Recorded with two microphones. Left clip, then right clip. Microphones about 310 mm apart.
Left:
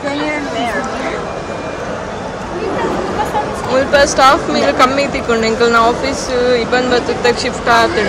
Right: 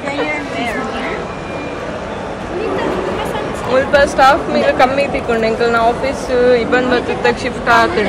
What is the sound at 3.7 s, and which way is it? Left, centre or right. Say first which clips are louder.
Speech: even; centre.